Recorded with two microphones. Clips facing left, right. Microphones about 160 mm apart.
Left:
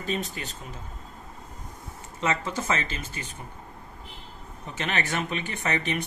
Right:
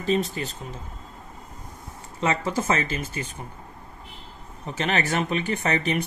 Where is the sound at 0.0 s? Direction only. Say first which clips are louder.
Right 7 dB; 35° right (ahead or behind).